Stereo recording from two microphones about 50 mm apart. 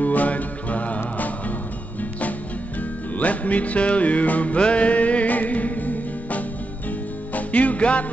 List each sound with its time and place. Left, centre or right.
0.0 s music: left
3.2 s music: left